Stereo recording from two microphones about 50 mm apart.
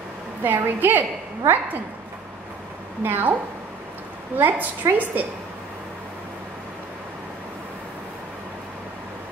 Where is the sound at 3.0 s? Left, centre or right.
Right.